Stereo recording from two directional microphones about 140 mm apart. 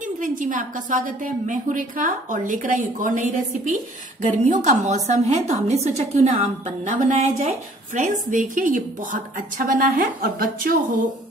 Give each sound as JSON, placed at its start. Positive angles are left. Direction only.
{"t": 0.0, "sound": "a woman's voice", "side_deg": -70}
{"t": 4.2, "sound": "a woman's voice", "side_deg": -60}